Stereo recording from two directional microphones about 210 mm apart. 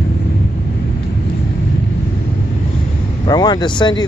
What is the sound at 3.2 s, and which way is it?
Speech, 20° left (ahead or behind).